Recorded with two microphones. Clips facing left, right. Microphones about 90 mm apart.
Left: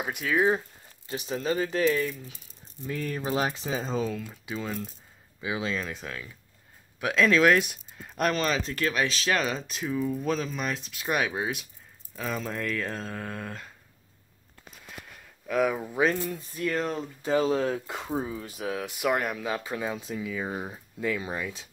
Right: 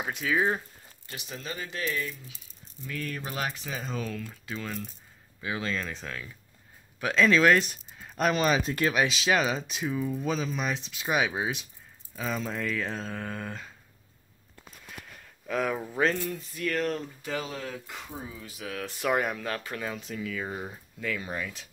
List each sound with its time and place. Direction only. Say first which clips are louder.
0.0 s speech: left 2 dB; 5° left (ahead or behind)
1.1 s speech: left 10 dB; 35° left (ahead or behind)
4.3 s speech: left 3 dB; 5° left (ahead or behind)
8.1 s speech: right 1 dB; 5° right (ahead or behind)
15.0 s speech: left 1 dB; 5° left (ahead or behind)
16.3 s speech: left 2 dB; 30° left (ahead or behind)
16.6 s speech: left 1 dB; 20° left (ahead or behind)
17.2 s speech: left 10 dB; 35° left (ahead or behind)
18.7 s speech: left 3 dB; 15° left (ahead or behind)
19.0 s speech: even; centre (ahead or behind)
19.4 s speech: left 3 dB; 15° left (ahead or behind)